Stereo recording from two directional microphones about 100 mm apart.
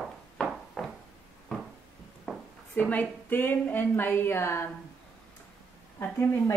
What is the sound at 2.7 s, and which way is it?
A woman's voice, 15° left (ahead or behind).